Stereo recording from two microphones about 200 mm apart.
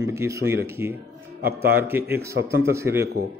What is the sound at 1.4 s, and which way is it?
Speech, 50° right (ahead or behind).